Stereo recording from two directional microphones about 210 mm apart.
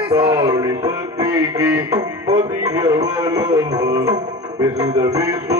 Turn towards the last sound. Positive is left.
turn(degrees=-15)  # may be behind; listen again after turning